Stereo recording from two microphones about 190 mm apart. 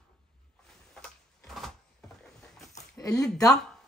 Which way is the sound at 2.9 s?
20° left (ahead or behind).